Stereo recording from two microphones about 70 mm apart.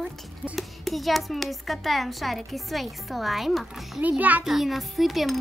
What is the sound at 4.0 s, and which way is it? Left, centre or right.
Speech, right.